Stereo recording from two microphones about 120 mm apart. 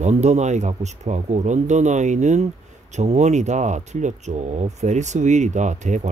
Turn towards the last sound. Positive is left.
turn(degrees=-90)